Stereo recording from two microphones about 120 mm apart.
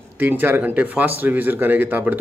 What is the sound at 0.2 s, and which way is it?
Speech, 15° right (ahead or behind).